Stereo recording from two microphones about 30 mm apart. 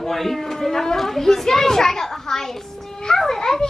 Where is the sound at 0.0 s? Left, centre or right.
Centre.